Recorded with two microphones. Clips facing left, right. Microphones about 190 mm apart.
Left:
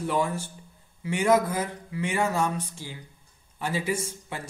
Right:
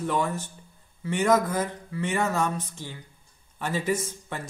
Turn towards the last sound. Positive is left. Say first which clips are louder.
# right 2 dB
turn(degrees=10)  # may be behind; listen again after turning